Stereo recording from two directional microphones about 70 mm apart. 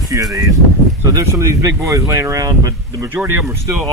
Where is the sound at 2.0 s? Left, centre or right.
Right.